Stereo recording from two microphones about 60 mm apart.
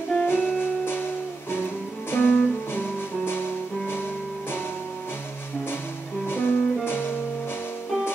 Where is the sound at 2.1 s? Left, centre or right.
Left.